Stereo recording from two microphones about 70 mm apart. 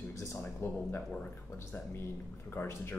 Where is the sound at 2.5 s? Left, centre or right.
Left.